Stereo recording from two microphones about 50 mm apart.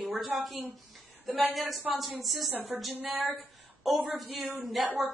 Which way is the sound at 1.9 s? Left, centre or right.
Centre.